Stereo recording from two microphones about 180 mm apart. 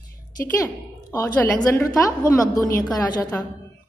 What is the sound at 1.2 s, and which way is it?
A woman's voice, 10° left (ahead or behind).